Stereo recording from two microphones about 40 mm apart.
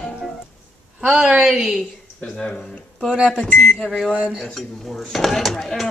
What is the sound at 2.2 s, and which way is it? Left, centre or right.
Speech, left.